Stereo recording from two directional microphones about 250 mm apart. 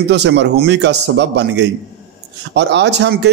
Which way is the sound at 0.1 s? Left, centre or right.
Right.